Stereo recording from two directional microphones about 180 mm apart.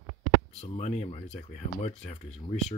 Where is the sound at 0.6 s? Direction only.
35° left (ahead or behind).